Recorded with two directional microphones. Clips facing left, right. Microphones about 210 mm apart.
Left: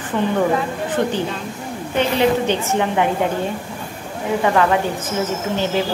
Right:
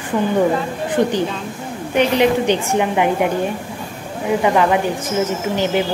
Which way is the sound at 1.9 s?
15° right (ahead or behind).